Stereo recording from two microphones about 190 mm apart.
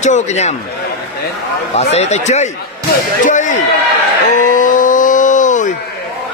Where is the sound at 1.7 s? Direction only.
35° left (ahead or behind).